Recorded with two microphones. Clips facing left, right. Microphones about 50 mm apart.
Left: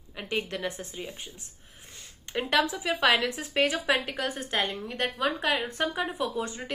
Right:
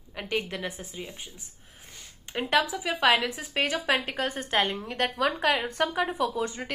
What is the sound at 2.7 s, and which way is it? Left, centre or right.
A woman's voice, centre.